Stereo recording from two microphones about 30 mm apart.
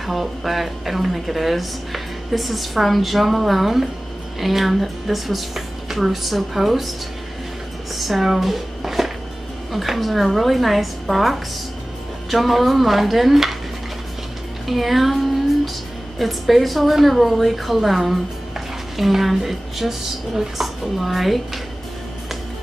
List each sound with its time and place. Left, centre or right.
0.0 s a woman's voice: centre
7.9 s a woman's voice: centre
14.7 s a woman's voice: centre
16.2 s a woman's voice: centre